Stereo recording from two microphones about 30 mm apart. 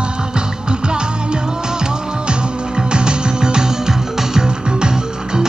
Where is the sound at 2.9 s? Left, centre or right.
Right.